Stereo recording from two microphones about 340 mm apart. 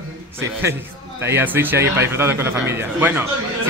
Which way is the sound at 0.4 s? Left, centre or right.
Centre.